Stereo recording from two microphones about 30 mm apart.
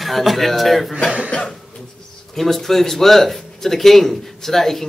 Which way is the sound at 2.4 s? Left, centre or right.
Centre.